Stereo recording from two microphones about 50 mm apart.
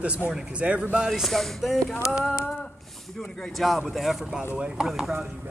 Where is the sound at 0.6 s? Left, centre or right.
Right.